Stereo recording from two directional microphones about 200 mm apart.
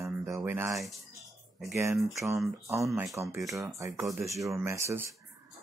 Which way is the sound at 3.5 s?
15° right (ahead or behind).